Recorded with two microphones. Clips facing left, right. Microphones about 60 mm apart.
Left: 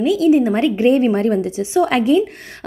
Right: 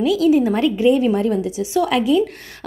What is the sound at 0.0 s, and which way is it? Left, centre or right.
A woman's voice, left.